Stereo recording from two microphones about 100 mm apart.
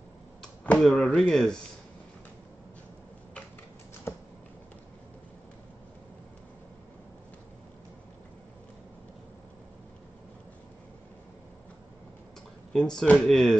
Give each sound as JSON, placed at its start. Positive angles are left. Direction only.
{"t": 0.4, "sound": "speech", "side_deg": 5}
{"t": 4.1, "sound": "a sound", "side_deg": 25}
{"t": 12.7, "sound": "speech", "side_deg": 5}